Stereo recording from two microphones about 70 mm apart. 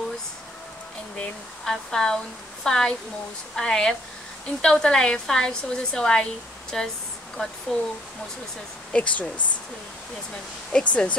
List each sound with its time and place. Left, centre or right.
1.1 s a woman's voice: centre
8.9 s a woman's voice: centre
10.7 s a woman's voice: centre